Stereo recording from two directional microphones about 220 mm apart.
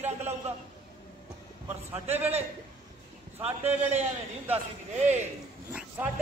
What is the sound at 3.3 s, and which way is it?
Speech, 10° right (ahead or behind).